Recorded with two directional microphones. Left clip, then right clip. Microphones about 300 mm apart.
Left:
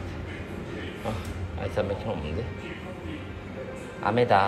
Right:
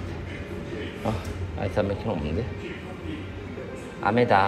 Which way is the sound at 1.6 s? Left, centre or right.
Centre.